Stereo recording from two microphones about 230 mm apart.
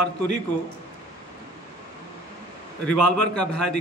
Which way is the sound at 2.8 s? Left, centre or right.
Centre.